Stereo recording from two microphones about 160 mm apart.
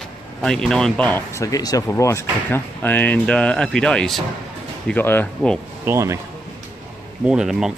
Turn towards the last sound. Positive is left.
turn(degrees=-5)  # may be behind; listen again after turning